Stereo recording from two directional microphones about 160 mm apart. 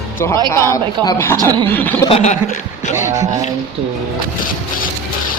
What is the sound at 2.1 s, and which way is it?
Chuckle, 45° left (ahead or behind).